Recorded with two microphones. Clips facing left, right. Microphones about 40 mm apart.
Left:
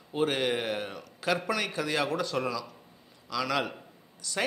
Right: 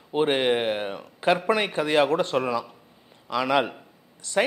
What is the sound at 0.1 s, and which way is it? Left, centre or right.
A man's voice, right.